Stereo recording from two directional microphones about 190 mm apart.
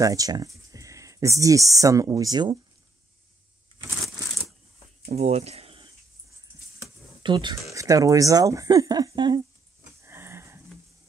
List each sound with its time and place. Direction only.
0.0 s speech: 20° right (ahead or behind)
5.1 s speech: 35° right (ahead or behind)
10.0 s a sound: 15° right (ahead or behind)